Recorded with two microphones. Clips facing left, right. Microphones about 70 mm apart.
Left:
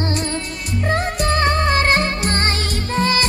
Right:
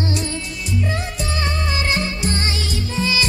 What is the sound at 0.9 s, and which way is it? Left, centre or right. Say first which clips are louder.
Music: left 6 dB; left.